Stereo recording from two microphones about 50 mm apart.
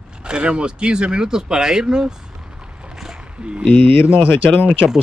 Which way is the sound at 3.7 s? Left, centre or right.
Left.